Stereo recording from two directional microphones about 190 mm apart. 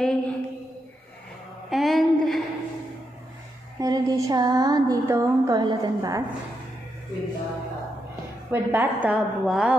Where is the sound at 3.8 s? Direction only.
20° right (ahead or behind).